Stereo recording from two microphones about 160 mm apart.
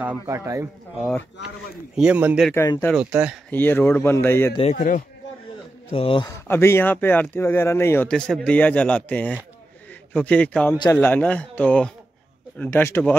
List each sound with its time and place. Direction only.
0.0 s speech: 15° right (ahead or behind)
3.4 s speech: 10° left (ahead or behind)
4.7 s speech: 50° left (ahead or behind)
5.9 s a man's voice: 35° left (ahead or behind)
6.2 s speech: 15° left (ahead or behind)